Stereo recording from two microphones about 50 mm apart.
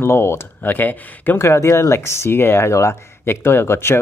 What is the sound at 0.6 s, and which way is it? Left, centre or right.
Speech, left.